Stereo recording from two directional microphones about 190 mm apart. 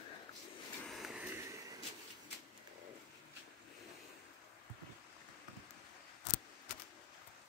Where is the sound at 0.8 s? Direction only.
Centre (ahead or behind).